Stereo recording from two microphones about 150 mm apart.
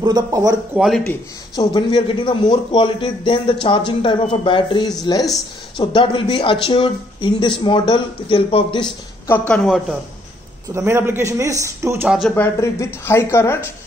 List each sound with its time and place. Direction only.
0.0 s a man's voice: 25° right (ahead or behind)
0.7 s speech: centre (ahead or behind)
1.5 s speech: 30° left (ahead or behind)
9.3 s speech: 10° left (ahead or behind)
10.7 s a man's voice: 15° right (ahead or behind)
12.4 s speech: 20° left (ahead or behind)